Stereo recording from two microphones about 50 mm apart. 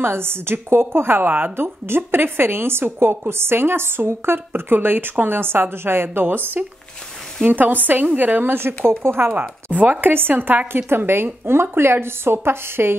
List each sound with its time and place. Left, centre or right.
0.0 s a woman's voice: right
1.6 s a woman's voice: right
8.5 s a woman's voice: right
10.9 s a woman's voice: right